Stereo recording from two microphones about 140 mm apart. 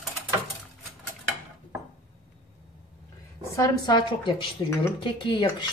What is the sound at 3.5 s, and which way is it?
A woman's voice, 25° left (ahead or behind).